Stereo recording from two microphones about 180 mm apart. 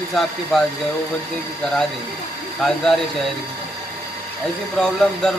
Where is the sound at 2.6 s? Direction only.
5° left (ahead or behind).